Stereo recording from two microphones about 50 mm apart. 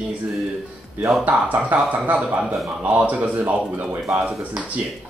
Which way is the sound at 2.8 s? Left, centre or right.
Right.